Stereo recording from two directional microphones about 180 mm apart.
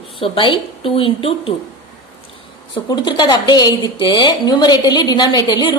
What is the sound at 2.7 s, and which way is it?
A woman's voice, 25° left (ahead or behind).